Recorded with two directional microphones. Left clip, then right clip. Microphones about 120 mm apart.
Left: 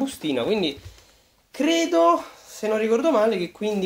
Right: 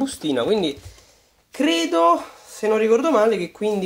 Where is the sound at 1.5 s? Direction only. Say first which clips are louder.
Right 1 dB; 40° right (ahead or behind).